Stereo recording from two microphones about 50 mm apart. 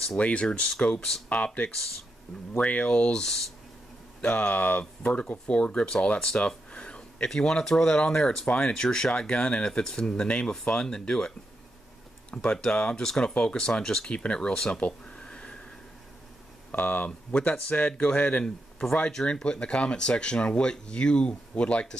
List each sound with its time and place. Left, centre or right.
0.2 s speech: left
1.3 s speech: left; by 3.4 s centre
4.2 s speech: left
5.9 s a sound: centre
7.2 s speech: centre
14.7 s a sound: left
16.7 s speech: left
19.4 s speech: left